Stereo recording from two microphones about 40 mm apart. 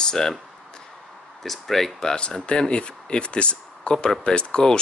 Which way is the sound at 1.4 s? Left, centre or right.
Centre.